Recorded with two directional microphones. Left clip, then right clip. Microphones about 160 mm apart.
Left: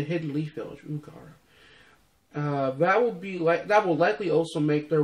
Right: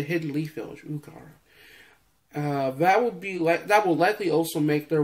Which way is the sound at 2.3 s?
10° right (ahead or behind).